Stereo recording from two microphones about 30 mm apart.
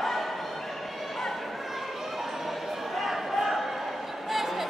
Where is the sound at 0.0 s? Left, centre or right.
Centre.